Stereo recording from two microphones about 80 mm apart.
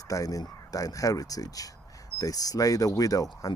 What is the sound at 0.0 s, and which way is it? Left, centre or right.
Speech, left.